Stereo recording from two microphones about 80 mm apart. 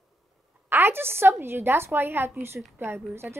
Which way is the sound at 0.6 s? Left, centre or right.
Right.